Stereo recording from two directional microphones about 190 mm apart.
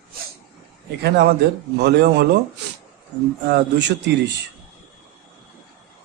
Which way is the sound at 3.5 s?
65° right (ahead or behind).